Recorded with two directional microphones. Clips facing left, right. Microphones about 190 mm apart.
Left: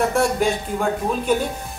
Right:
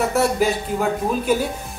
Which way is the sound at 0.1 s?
5° right (ahead or behind).